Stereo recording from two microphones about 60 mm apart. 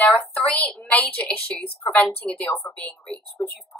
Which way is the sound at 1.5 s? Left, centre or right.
Centre.